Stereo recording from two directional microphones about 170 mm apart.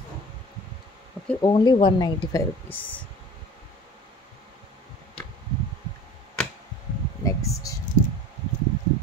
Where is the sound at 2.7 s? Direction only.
10° left (ahead or behind).